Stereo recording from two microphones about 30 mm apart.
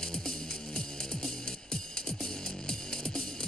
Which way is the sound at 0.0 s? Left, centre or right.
Left.